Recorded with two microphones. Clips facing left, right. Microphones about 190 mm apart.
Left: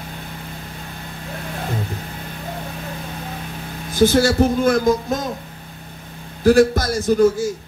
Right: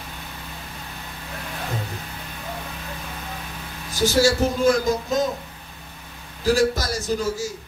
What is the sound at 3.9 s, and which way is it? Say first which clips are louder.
Speech: left 4 dB; 55° left (ahead or behind).